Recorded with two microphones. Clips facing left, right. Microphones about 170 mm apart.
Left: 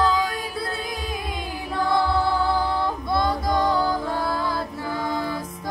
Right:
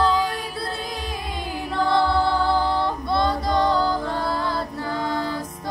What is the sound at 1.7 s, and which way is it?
Music, centre (ahead or behind).